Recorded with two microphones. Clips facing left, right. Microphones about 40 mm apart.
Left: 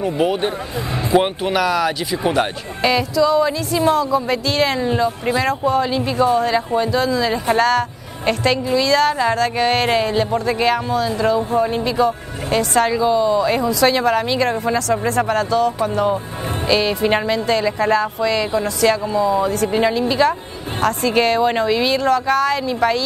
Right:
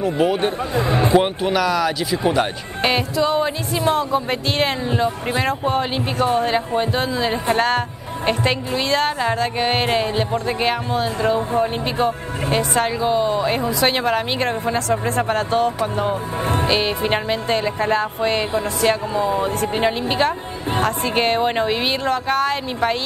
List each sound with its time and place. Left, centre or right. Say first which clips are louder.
0.0 s speech: even; centre
0.7 s speech: right 5 dB; right
1.1 s speech: left 4 dB; centre
2.8 s speech: left 3 dB; right
5.7 s speech: left 3 dB; right
6.4 s speech: left 2 dB; right
9.3 s music: left 3 dB; centre
10.3 s speech: left 3 dB; right
13.0 s speech: left 3 dB; right
13.5 s speech: left 3 dB; right
16.0 s speech: left 2 dB; right